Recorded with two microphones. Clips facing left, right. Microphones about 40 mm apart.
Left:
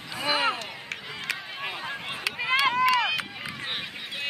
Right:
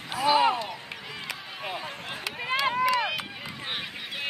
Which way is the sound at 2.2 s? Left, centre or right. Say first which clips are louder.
Left 3 dB; left.